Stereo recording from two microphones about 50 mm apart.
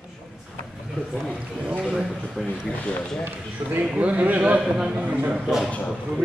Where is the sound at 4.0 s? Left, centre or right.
Right.